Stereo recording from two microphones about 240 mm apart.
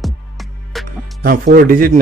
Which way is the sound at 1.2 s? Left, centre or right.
Right.